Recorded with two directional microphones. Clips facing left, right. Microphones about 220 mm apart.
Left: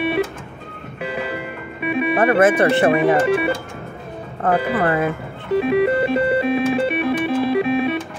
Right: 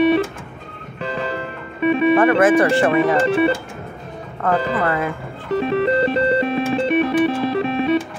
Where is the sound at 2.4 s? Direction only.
20° left (ahead or behind).